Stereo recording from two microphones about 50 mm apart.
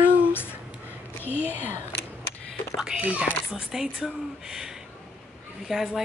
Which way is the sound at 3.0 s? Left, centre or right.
Right.